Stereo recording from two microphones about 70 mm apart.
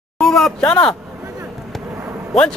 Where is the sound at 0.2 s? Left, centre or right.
Centre.